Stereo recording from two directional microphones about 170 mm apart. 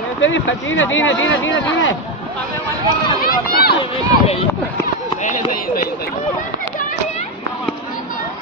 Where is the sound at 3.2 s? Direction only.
65° left (ahead or behind).